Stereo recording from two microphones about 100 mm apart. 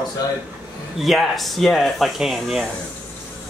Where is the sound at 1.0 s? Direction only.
Centre (ahead or behind).